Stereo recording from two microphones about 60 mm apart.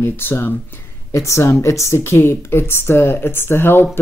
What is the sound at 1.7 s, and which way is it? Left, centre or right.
Speech, left.